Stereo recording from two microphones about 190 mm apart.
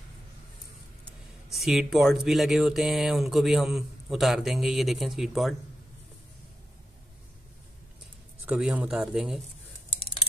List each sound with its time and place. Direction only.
1.5 s speech: centre (ahead or behind)
8.5 s speech: 5° right (ahead or behind)